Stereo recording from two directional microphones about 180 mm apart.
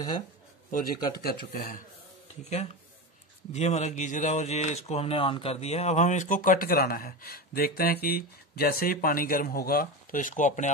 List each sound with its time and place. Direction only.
0.7 s speech: 55° left (ahead or behind)
3.5 s speech: 40° left (ahead or behind)